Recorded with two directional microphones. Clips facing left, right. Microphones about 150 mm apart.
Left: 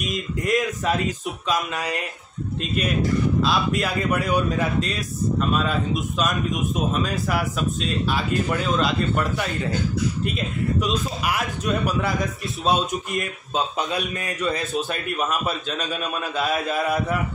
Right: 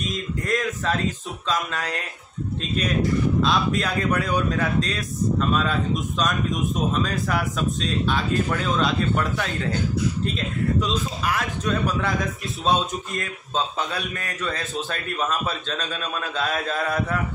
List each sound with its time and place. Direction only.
0.4 s a man's voice: 15° left (ahead or behind)
3.4 s a man's voice: 5° left (ahead or behind)
10.9 s a man's voice: 10° left (ahead or behind)
13.7 s a man's voice: 20° left (ahead or behind)